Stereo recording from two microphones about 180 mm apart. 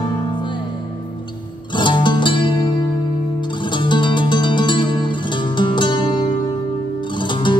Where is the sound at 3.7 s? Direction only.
25° left (ahead or behind).